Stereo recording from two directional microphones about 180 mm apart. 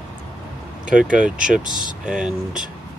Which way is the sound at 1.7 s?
25° left (ahead or behind).